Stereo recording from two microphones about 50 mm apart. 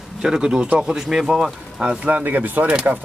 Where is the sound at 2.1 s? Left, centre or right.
Right.